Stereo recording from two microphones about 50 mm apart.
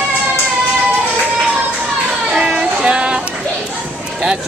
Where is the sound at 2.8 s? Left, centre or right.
Centre.